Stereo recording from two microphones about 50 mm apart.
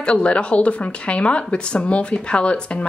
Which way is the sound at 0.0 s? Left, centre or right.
Left.